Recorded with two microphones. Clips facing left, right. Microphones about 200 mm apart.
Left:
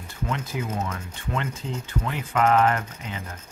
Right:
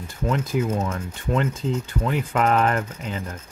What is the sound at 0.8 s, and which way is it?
Speech, 35° right (ahead or behind).